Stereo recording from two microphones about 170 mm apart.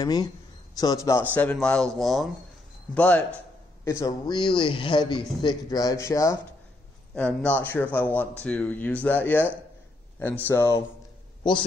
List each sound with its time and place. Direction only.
0.0 s speech: 25° left (ahead or behind); by 2.3 s centre (ahead or behind)
2.9 s a man's voice: 10° left (ahead or behind)
3.8 s a man's voice: 20° left (ahead or behind)